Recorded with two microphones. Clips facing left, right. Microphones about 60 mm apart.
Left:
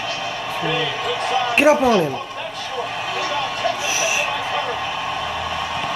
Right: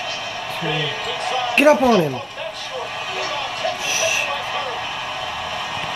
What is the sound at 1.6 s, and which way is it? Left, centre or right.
Speech, centre.